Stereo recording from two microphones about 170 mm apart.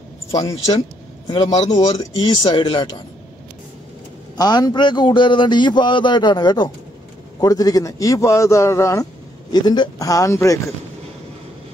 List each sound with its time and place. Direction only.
0.7 s a man's voice: 30° left (ahead or behind)
4.4 s a man's voice: 25° left (ahead or behind)